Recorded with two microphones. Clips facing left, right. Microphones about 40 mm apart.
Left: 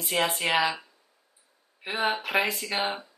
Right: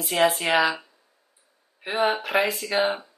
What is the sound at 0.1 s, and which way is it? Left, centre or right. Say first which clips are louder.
Speech: right 6 dB; centre.